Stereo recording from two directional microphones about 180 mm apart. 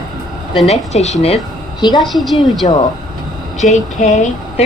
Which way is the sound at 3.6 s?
40° left (ahead or behind).